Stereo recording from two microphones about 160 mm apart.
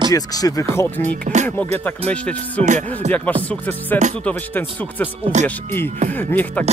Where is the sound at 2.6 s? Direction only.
50° right (ahead or behind).